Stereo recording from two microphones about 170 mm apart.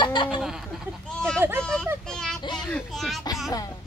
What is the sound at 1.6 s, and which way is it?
Speech, 5° left (ahead or behind).